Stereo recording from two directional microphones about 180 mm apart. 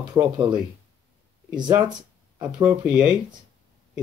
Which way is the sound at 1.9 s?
20° right (ahead or behind).